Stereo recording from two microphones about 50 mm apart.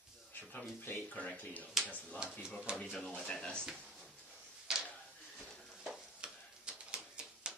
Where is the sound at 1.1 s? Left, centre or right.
Left.